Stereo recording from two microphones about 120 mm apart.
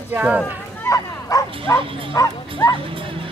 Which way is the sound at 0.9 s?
30° left (ahead or behind).